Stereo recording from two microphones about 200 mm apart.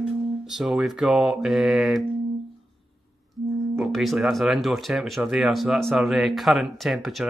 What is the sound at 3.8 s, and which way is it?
Speech, centre (ahead or behind).